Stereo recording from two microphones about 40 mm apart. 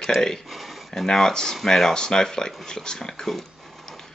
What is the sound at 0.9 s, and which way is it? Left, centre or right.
Speech, centre.